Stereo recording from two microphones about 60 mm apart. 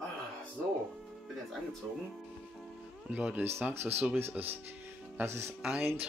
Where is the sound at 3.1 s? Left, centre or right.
Right.